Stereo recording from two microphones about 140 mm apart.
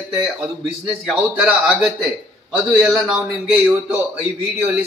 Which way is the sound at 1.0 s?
5° right (ahead or behind).